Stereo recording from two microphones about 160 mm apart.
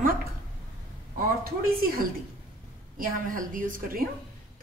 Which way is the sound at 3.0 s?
60° right (ahead or behind).